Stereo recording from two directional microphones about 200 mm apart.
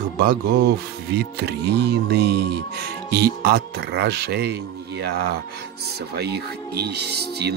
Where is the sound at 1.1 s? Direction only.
55° right (ahead or behind).